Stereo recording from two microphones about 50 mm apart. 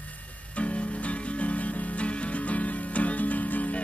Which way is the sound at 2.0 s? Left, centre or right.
Left.